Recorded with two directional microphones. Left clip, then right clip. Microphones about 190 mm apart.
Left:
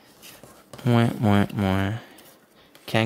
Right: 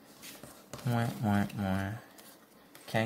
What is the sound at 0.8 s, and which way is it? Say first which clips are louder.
Speech: left 11 dB; 55° left (ahead or behind).